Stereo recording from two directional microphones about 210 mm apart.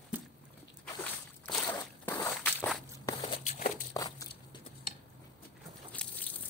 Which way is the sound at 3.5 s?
40° left (ahead or behind).